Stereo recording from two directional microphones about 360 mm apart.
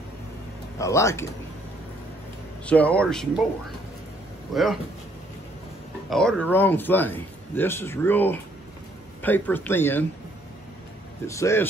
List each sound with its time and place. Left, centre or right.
0.7 s speech: centre
2.6 s a man's voice: centre
4.5 s a man's voice: centre
6.0 s a man's voice: centre
11.2 s speech: centre